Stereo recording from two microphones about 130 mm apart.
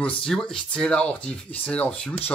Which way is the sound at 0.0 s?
5° left (ahead or behind).